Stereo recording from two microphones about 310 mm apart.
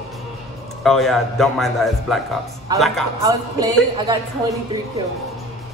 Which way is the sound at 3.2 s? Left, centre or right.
Centre.